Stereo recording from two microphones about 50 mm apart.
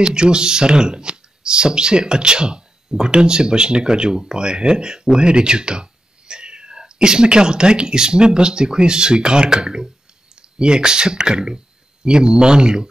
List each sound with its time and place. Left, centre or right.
0.0 s speech: centre